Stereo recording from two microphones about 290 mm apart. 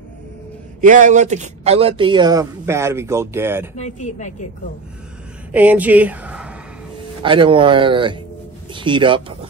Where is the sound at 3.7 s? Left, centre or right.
Left.